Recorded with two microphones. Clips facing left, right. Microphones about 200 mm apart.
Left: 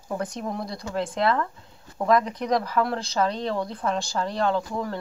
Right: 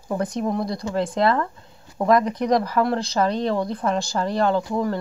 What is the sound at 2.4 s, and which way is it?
Speech, centre (ahead or behind).